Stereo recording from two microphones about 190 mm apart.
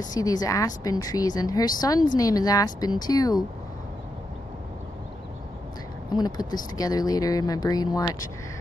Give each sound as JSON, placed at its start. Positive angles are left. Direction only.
{"t": 0.1, "sound": "speech", "side_deg": 20}
{"t": 6.1, "sound": "speech", "side_deg": 20}